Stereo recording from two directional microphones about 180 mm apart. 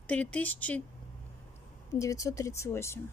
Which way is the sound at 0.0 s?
10° left (ahead or behind).